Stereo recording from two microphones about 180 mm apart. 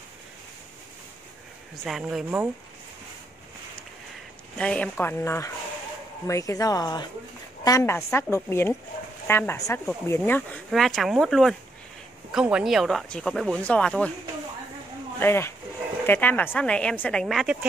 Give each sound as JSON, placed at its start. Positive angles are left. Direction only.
{"t": 1.9, "sound": "speech", "side_deg": 0}
{"t": 4.6, "sound": "a woman's voice", "side_deg": 5}
{"t": 10.7, "sound": "speech", "side_deg": 0}
{"t": 15.1, "sound": "a woman's voice", "side_deg": 15}